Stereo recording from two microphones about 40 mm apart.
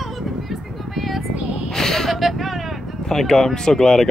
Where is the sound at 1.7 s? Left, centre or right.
Centre.